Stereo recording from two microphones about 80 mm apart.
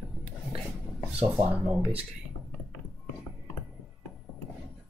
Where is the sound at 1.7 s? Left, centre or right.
Centre.